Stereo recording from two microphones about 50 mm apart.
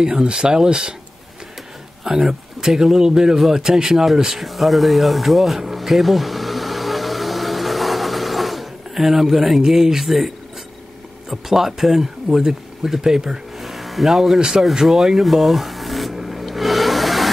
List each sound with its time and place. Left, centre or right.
0.0 s speech: centre
2.0 s speech: centre
4.5 s a sound: centre